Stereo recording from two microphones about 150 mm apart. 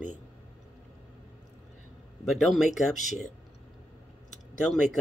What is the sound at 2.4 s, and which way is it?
Speech, centre (ahead or behind).